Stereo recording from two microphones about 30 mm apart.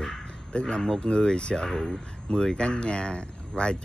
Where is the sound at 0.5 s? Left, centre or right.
Left.